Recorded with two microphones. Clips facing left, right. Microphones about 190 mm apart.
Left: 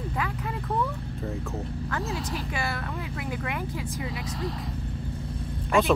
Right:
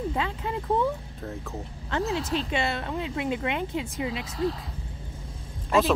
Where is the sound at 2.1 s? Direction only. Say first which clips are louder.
Right 4 dB; 25° right (ahead or behind).